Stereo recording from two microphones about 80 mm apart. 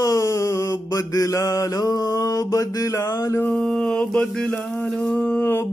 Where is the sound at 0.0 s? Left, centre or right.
Left.